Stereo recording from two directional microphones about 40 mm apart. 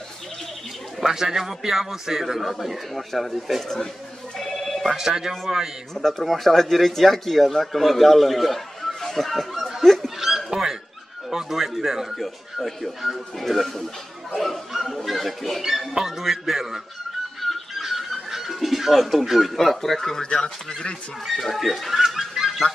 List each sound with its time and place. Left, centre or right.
1.0 s speech: centre
3.6 s speech: centre
4.8 s speech: centre
5.9 s speech: centre
10.2 s a sound: centre
11.3 s speech: centre
17.4 s a sound: centre
17.9 s fowl: centre
19.5 s speech: centre
20.2 s speech: left
21.3 s speech: centre